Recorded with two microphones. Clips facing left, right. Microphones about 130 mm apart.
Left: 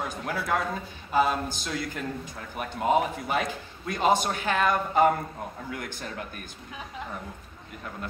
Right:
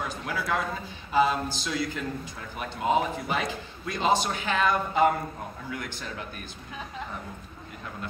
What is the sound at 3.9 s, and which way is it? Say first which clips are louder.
A man's voice: left 1 dB; 50° left (ahead or behind).